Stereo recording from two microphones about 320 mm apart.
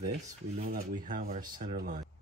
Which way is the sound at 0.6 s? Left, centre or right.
Right.